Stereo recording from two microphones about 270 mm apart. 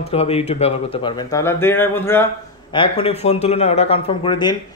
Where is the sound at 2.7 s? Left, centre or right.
Centre.